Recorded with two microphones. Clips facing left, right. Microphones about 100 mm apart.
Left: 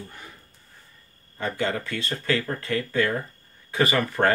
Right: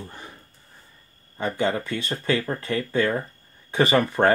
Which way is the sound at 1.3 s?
20° right (ahead or behind).